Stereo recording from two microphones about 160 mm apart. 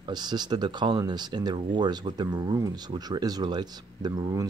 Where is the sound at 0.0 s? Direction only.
25° right (ahead or behind).